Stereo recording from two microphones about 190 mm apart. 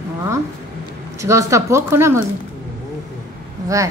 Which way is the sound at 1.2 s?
15° right (ahead or behind).